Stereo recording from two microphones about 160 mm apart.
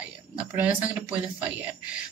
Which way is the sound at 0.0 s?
10° right (ahead or behind).